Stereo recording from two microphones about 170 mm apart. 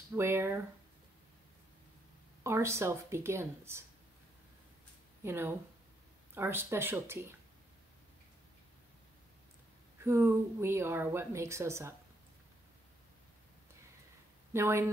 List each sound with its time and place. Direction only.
0.1 s a woman's voice: 15° right (ahead or behind)
2.4 s a woman's voice: 15° right (ahead or behind)
5.2 s a woman's voice: 15° right (ahead or behind)
10.0 s a woman's voice: 15° right (ahead or behind)
14.5 s a woman's voice: 15° right (ahead or behind)